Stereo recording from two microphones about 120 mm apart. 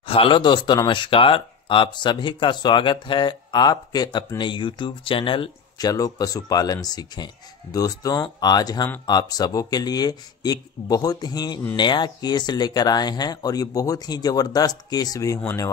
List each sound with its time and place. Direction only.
0.0 s speech: 50° left (ahead or behind)
5.8 s speech: 30° left (ahead or behind)